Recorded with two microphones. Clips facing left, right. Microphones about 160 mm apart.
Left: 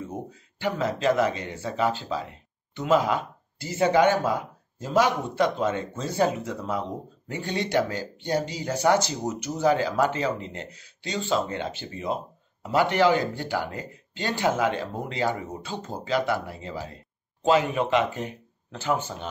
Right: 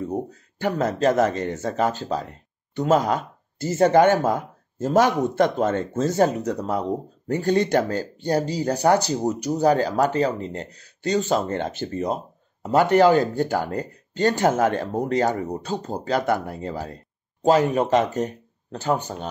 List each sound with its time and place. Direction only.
0.0 s speech: 40° right (ahead or behind)